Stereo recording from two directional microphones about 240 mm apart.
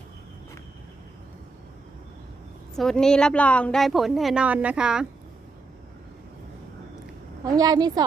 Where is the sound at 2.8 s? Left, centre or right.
Centre.